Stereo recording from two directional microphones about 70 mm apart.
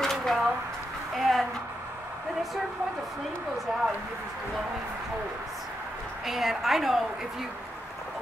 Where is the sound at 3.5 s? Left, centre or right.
Centre.